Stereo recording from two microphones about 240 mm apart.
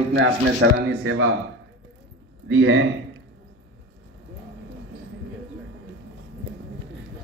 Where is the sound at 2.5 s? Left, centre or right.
Right.